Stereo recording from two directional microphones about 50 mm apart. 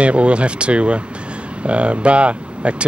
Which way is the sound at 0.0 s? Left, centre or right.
Right.